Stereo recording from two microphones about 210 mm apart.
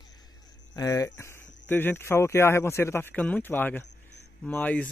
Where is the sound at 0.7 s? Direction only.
15° left (ahead or behind).